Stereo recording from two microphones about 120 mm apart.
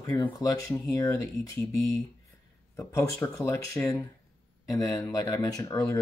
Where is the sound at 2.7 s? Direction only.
20° left (ahead or behind).